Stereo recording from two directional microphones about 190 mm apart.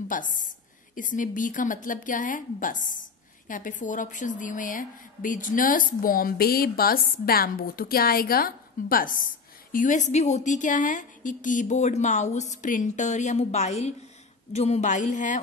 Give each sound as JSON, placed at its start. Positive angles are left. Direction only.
{"t": 0.1, "sound": "a woman's voice", "side_deg": 45}